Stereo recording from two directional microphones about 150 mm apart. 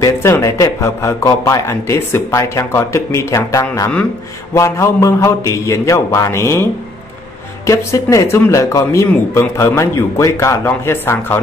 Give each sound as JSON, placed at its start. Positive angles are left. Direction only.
{"t": 0.0, "sound": "a man's voice", "side_deg": 20}
{"t": 7.6, "sound": "a man's voice", "side_deg": 20}